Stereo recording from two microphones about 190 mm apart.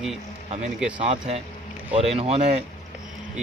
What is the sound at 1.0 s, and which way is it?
Speech, 35° right (ahead or behind).